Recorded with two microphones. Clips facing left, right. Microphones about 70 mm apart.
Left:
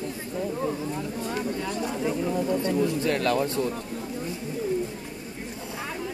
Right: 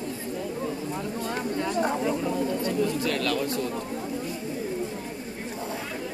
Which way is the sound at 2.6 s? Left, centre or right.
Left.